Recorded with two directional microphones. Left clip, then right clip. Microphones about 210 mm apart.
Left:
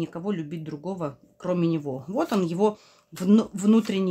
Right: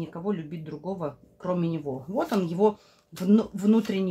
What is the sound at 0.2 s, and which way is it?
A woman's voice, 30° left (ahead or behind).